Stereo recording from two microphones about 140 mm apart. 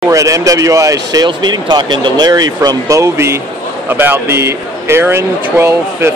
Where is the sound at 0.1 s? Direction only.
25° right (ahead or behind).